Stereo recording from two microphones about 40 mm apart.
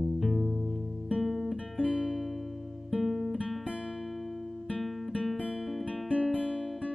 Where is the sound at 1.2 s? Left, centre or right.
Centre.